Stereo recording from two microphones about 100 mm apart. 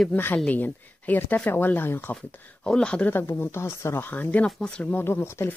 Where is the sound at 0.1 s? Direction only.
20° left (ahead or behind).